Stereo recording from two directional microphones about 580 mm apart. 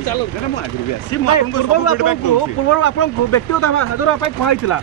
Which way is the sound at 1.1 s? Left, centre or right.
Left.